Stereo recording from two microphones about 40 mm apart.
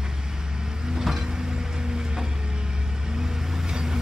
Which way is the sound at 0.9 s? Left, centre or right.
Centre.